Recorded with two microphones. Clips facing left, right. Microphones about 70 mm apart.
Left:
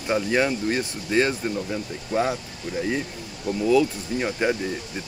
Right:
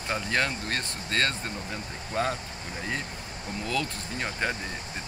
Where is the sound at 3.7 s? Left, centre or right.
Centre.